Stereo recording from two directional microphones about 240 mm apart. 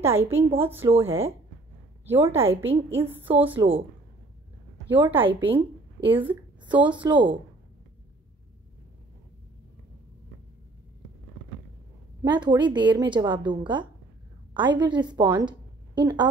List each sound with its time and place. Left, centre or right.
0.0 s a woman's voice: centre
3.5 s a woman's voice: right
5.0 s a woman's voice: right
6.0 s a woman's voice: centre
6.6 s a woman's voice: centre
12.3 s a woman's voice: centre